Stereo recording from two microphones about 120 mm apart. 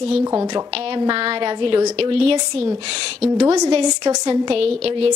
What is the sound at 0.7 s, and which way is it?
A woman's voice, 50° right (ahead or behind).